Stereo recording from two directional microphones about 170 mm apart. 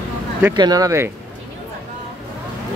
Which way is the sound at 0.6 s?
20° right (ahead or behind).